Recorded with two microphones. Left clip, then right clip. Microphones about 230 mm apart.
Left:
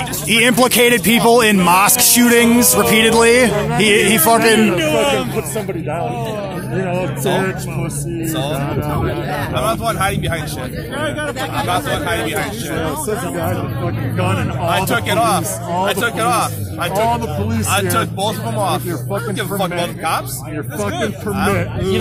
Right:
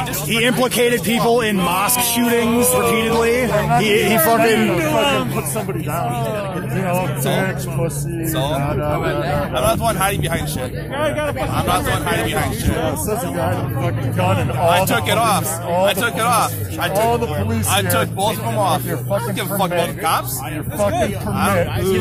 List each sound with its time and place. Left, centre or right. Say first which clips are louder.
0.3 s speech: left 5 dB; centre
3.8 s speech: left 3 dB; centre
4.6 s speech: left 2 dB; centre
9.6 s speech: even; centre
11.7 s speech: even; centre
14.7 s speech: even; centre
17.9 s speech: even; centre